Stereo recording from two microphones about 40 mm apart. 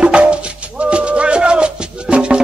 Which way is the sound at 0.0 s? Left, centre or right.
Right.